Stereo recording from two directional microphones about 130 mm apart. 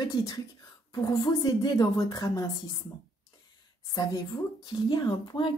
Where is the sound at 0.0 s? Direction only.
30° left (ahead or behind).